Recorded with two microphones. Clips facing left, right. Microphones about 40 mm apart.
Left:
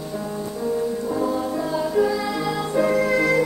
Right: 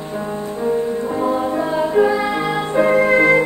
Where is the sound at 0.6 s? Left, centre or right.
Right.